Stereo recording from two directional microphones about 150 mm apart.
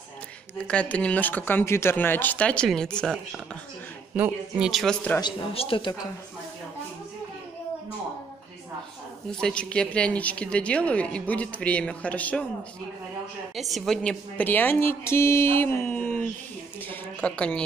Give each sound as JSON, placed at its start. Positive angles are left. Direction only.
{"t": 0.6, "sound": "a woman's voice", "side_deg": 10}
{"t": 4.1, "sound": "speech", "side_deg": -10}
{"t": 5.2, "sound": "speech", "side_deg": 40}
{"t": 9.3, "sound": "a woman's voice", "side_deg": 5}
{"t": 13.6, "sound": "a woman's voice", "side_deg": 0}